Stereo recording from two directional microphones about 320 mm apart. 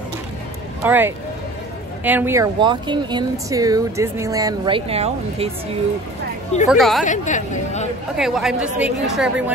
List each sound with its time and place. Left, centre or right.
0.8 s a woman's voice: centre
6.7 s a woman's voice: centre
7.1 s speech: left
8.2 s a woman's voice: centre